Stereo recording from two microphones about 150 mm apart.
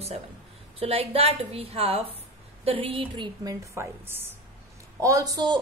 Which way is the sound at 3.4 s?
20° right (ahead or behind).